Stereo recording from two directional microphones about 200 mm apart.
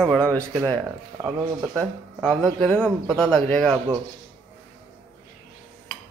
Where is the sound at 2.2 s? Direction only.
Centre (ahead or behind).